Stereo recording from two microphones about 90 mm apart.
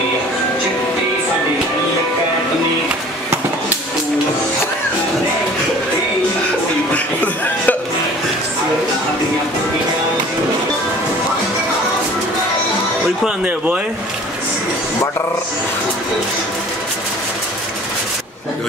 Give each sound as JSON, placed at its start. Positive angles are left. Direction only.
{"t": 6.9, "sound": "music", "side_deg": 15}